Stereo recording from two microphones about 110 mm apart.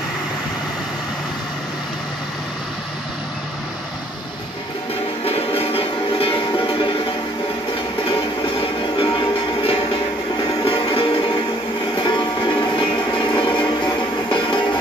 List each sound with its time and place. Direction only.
5.2 s music: 60° left (ahead or behind)
8.1 s music: 50° left (ahead or behind)
12.0 s music: 45° left (ahead or behind)